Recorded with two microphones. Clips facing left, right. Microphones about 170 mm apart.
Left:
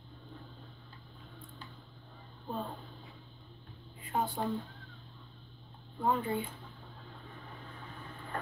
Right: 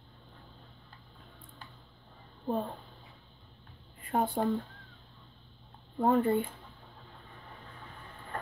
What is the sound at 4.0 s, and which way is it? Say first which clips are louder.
Speech: right 4 dB; 55° right (ahead or behind).